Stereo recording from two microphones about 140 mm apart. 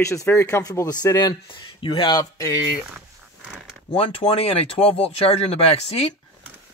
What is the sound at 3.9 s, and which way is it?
Speech, 40° left (ahead or behind).